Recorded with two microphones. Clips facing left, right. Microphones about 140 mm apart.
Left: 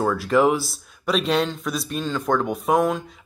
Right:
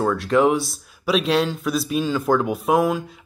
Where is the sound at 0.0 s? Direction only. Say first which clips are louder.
Right 1 dB; centre (ahead or behind).